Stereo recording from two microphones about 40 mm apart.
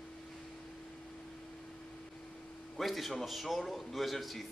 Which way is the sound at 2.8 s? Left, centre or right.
Centre.